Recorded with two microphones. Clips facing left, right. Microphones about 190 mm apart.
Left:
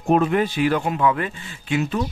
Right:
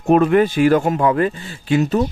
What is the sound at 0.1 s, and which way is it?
Speech, 60° right (ahead or behind).